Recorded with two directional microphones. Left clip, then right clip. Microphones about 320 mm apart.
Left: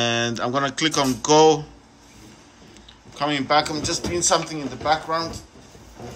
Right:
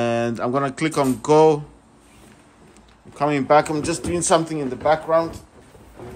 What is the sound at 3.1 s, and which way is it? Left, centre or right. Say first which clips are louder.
Speech: right 3 dB; centre.